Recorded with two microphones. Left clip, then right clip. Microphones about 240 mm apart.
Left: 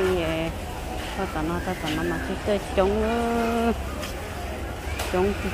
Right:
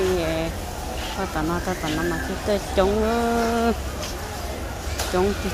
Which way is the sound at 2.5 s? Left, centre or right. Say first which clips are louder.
Right 2 dB; centre.